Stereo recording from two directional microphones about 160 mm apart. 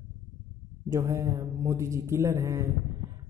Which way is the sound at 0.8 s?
20° right (ahead or behind).